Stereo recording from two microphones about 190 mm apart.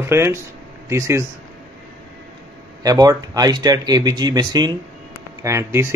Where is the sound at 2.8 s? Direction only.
20° right (ahead or behind).